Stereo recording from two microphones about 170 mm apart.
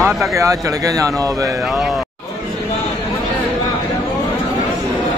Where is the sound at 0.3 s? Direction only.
20° right (ahead or behind).